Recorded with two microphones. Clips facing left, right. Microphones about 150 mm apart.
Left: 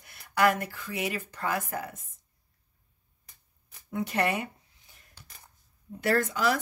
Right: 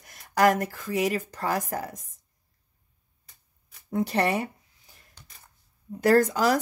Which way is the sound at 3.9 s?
35° right (ahead or behind).